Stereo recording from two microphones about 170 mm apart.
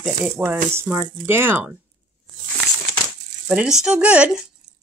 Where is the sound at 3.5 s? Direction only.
5° right (ahead or behind).